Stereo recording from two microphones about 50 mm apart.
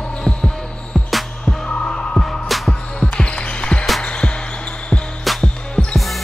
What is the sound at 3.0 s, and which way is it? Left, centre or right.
Basketball bounce, centre.